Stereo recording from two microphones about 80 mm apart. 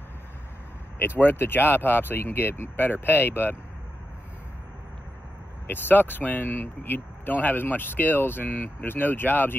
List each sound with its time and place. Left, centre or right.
0.9 s speech: left
5.7 s speech: left